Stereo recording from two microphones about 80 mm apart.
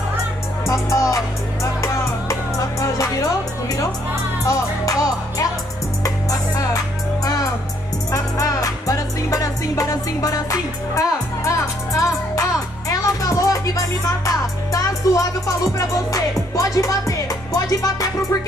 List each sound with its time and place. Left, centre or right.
0.7 s speech: left
1.1 s music: left
8.1 s music: left